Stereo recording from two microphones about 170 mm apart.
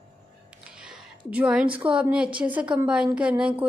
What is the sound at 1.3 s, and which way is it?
A woman's voice, 5° right (ahead or behind).